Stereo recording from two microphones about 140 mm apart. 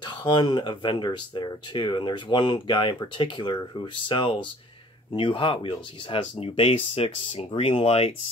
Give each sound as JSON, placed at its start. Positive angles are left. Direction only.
{"t": 0.0, "sound": "speech", "side_deg": 35}